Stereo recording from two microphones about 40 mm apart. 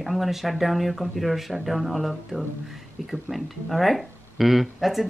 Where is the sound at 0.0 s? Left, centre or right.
Centre.